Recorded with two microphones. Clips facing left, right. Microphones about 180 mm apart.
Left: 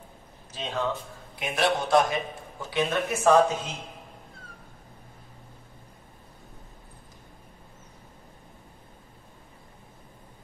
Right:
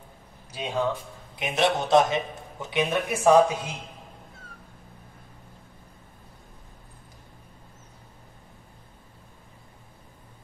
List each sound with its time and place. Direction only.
0.5 s speech: 10° right (ahead or behind)
1.3 s a man's voice: 20° right (ahead or behind)